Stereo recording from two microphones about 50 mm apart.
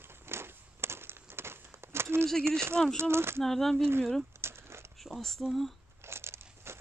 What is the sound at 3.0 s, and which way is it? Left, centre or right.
Speech, right.